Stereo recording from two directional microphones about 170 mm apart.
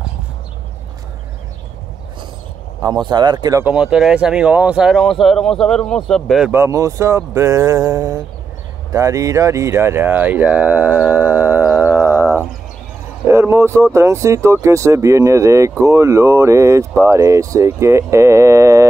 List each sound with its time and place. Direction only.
3.1 s speech: 25° right (ahead or behind)
3.6 s speech: 5° right (ahead or behind)
6.5 s speech: 20° right (ahead or behind)